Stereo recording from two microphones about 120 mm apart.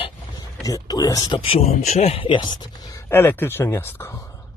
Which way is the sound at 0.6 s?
30° left (ahead or behind).